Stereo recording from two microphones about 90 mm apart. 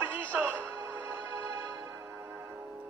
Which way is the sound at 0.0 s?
20° right (ahead or behind).